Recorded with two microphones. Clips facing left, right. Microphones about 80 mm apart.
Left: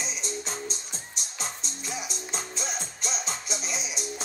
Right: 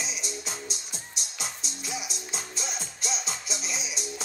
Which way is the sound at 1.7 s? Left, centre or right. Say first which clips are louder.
Even; left.